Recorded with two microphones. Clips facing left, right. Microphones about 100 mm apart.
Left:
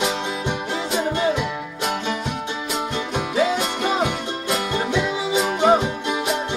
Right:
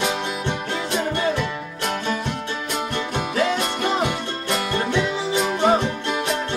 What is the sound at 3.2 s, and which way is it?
Music, 10° left (ahead or behind).